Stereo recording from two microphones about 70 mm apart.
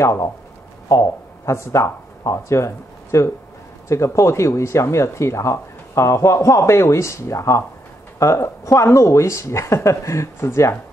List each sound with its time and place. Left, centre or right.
0.0 s speech: left